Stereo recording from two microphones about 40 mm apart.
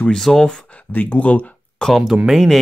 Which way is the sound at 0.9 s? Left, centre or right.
Left.